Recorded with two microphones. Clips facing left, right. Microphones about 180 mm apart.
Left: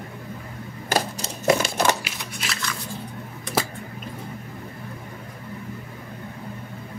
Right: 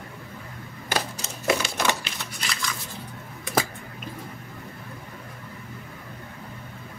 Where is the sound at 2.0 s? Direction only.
5° left (ahead or behind).